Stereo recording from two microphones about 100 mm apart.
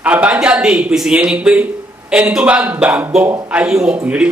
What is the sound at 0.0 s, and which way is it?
A man's voice, 15° right (ahead or behind).